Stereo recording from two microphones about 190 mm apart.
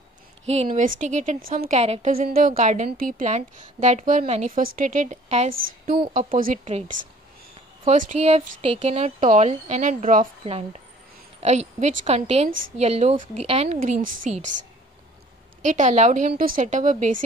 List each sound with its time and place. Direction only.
0.7 s speech: 45° right (ahead or behind)
2.1 s a woman's voice: 50° right (ahead or behind)
15.6 s a woman's voice: 40° right (ahead or behind)